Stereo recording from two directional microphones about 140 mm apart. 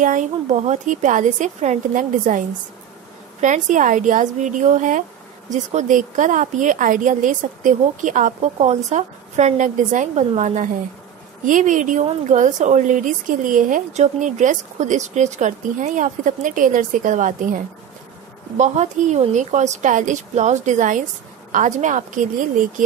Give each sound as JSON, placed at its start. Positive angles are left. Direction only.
{"t": 0.0, "sound": "speech", "side_deg": -65}
{"t": 18.6, "sound": "speech", "side_deg": -55}